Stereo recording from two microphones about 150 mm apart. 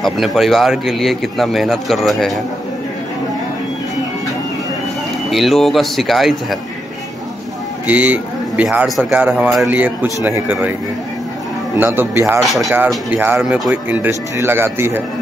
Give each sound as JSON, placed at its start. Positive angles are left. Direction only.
{"t": 0.0, "sound": "speech", "side_deg": 0}
{"t": 5.3, "sound": "speech", "side_deg": 0}
{"t": 7.8, "sound": "a man's voice", "side_deg": -10}
{"t": 11.7, "sound": "a man's voice", "side_deg": -15}
{"t": 12.4, "sound": "speech", "side_deg": 0}
{"t": 12.7, "sound": "a man's voice", "side_deg": -10}